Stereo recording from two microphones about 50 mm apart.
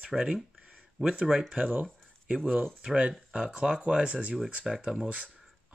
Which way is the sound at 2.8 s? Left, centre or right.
Right.